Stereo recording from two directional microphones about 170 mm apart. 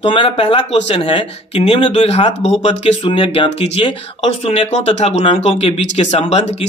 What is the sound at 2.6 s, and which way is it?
Speech, 30° left (ahead or behind).